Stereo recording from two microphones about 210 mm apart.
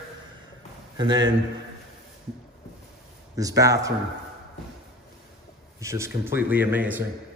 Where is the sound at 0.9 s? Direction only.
20° right (ahead or behind).